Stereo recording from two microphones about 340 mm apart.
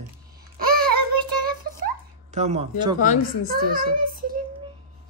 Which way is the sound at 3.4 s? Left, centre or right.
Right.